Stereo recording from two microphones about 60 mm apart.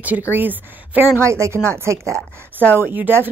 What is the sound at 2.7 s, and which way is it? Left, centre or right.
Speech, right.